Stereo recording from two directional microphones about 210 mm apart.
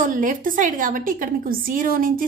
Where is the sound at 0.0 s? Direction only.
40° right (ahead or behind).